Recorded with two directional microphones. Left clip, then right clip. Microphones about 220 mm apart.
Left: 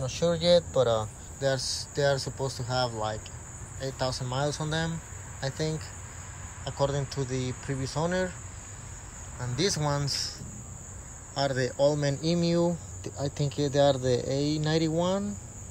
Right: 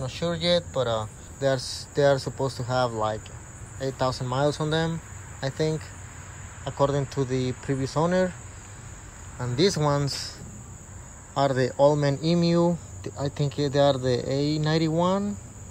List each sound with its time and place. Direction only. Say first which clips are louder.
0.0 s speech: left 1 dB; 20° left (ahead or behind)
6.6 s speech: right 5 dB; 10° left (ahead or behind)
9.4 s speech: right 6 dB; 10° left (ahead or behind)
11.3 s speech: right 5 dB; 10° left (ahead or behind)